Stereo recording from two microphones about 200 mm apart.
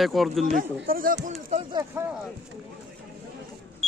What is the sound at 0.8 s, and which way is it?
Speech, 45° right (ahead or behind).